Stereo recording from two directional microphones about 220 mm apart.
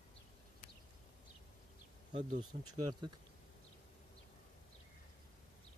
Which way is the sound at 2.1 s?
35° right (ahead or behind).